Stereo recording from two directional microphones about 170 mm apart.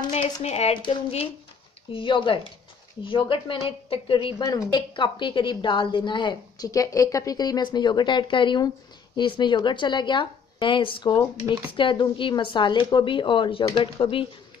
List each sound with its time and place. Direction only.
0.1 s speech: 40° left (ahead or behind)
0.7 s a woman's voice: 30° left (ahead or behind)
4.4 s a woman's voice: 20° left (ahead or behind)